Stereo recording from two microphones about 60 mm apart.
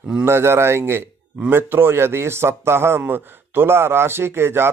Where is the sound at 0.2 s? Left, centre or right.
Right.